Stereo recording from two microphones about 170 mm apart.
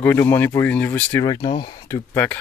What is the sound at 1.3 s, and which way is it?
Speech, 25° left (ahead or behind).